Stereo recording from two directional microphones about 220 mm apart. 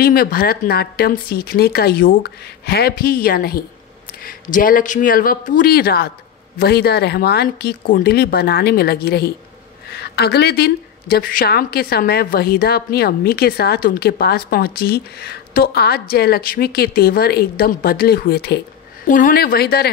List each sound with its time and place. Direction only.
0.0 s a woman's voice: 40° left (ahead or behind)